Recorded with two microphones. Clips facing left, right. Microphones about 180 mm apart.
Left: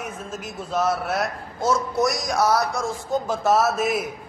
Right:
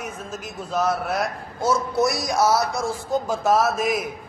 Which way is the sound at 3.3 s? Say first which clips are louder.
Even; centre (ahead or behind).